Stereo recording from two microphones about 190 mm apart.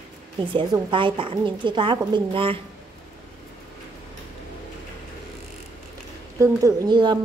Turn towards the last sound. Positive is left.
turn(degrees=-25)  # may be behind; listen again after turning